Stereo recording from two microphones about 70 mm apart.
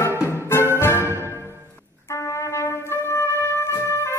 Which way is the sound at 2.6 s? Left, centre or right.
Left.